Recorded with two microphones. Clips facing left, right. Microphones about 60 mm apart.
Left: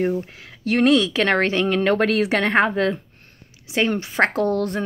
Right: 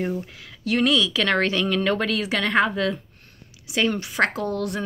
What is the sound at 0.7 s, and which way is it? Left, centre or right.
Speech, left.